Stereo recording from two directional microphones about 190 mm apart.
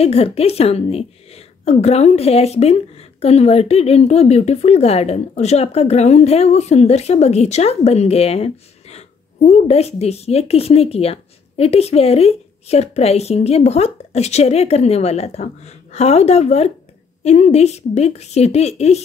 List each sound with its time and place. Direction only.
0.0 s a woman's voice: 30° left (ahead or behind)